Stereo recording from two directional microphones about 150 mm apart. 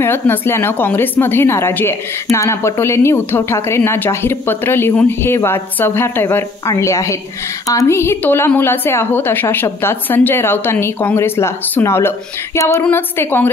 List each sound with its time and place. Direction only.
0.0 s a woman's voice: 15° left (ahead or behind)
12.5 s a sound: 20° left (ahead or behind)
12.8 s a woman's voice: 15° left (ahead or behind)